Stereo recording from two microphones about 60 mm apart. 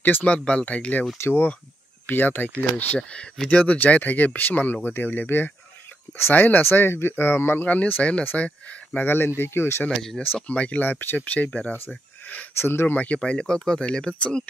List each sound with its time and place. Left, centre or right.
0.2 s speech: centre
1.1 s speech: left
2.5 s speech: centre; by 7.6 s left
7.6 s speech: left
9.0 s speech: left
9.8 s speech: centre
10.4 s speech: left
12.5 s speech: left
12.9 s speech: left